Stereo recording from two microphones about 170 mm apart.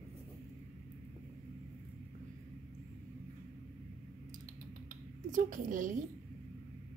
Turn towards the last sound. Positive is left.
turn(degrees=-50)  # may be behind; listen again after turning